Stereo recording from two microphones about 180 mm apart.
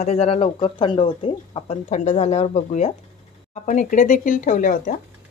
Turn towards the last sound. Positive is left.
turn(degrees=45)  # may be behind; listen again after turning